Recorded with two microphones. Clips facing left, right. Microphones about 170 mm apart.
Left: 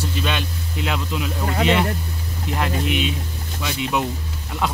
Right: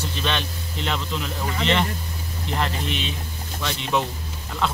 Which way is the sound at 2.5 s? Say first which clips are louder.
Left 4 dB; 10° left (ahead or behind).